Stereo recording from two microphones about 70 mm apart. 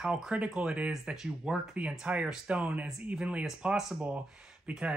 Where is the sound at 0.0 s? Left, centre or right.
Centre.